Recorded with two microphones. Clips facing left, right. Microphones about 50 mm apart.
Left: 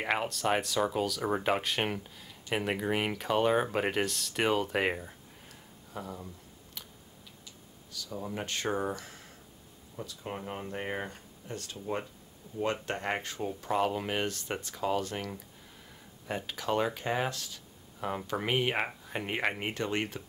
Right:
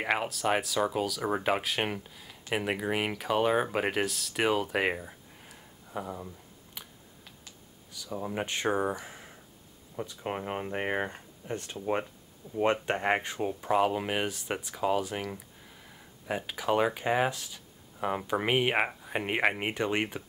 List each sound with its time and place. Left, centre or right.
0.0 s speech: centre
7.9 s speech: centre
9.9 s speech: right